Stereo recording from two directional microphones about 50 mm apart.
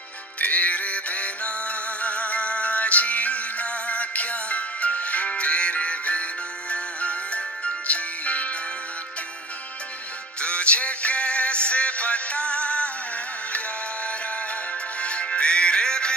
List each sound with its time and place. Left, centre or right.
0.4 s music: left
10.4 s music: left
15.0 s music: left